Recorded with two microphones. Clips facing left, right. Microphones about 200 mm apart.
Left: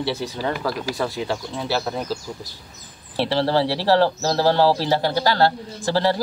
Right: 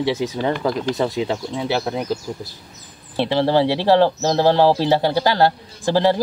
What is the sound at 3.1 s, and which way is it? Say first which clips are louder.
Speech: right 3 dB; 15° right (ahead or behind).